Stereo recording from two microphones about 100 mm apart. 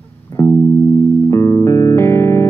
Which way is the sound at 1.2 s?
30° left (ahead or behind).